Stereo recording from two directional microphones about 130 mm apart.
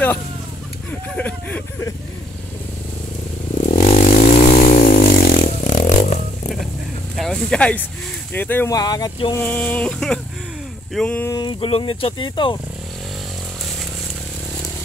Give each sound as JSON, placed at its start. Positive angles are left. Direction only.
{"t": 1.1, "sound": "speech", "side_deg": 10}
{"t": 3.8, "sound": "vehicle", "side_deg": 70}
{"t": 7.2, "sound": "speech", "side_deg": 5}
{"t": 8.6, "sound": "speech", "side_deg": 30}
{"t": 9.4, "sound": "speech", "side_deg": 15}
{"t": 11.2, "sound": "speech", "side_deg": 30}